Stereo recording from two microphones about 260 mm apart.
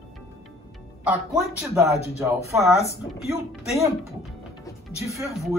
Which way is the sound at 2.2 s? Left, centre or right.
Centre.